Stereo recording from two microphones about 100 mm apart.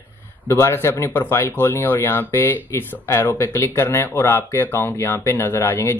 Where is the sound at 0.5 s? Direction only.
25° left (ahead or behind).